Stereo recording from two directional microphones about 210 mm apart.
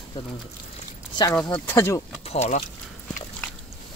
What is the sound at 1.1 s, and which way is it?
Speech, 20° left (ahead or behind).